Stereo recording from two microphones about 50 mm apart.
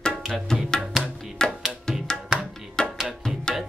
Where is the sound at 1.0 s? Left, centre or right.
Centre.